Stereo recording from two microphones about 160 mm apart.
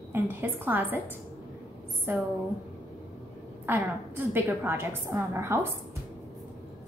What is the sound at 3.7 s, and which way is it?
A woman's voice, 15° right (ahead or behind).